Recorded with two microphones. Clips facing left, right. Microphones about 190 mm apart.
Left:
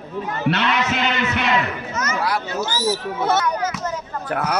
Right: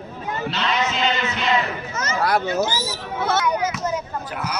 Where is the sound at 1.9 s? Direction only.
30° right (ahead or behind).